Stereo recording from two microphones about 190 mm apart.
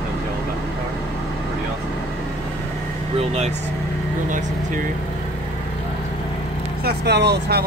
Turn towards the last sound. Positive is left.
turn(degrees=-60)  # may be behind; listen again after turning